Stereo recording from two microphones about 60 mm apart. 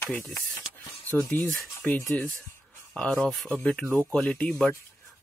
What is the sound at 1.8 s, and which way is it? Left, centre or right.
Speech, left.